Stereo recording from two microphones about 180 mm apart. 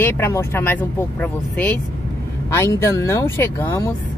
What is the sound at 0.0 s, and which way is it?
Speech, 15° left (ahead or behind).